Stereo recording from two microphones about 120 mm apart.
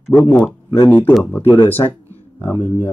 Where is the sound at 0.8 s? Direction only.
15° left (ahead or behind).